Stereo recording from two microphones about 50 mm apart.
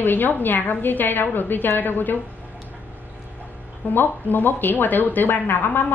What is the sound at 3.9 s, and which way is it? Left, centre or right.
Speech, left.